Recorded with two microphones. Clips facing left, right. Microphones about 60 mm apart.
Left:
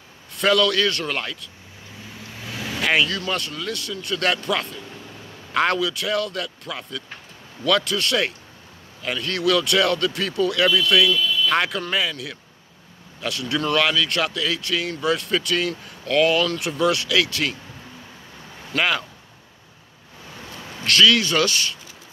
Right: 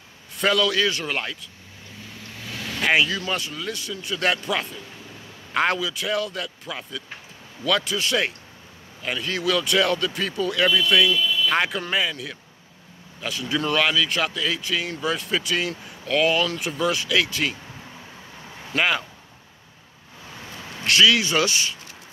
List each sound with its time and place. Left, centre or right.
0.4 s speech: centre
2.4 s vehicle: centre
2.8 s speech: centre
11.1 s speech: centre
11.4 s speech: centre
16.5 s speech: centre
18.7 s speech: centre
20.8 s speech: centre